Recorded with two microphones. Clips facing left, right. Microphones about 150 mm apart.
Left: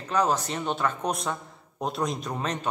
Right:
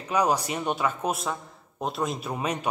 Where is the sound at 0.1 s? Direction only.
10° right (ahead or behind).